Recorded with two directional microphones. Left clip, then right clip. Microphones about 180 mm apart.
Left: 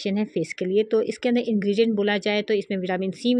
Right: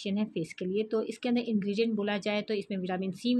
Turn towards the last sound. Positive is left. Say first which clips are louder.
# left 8 dB
turn(degrees=30)  # may be behind; listen again after turning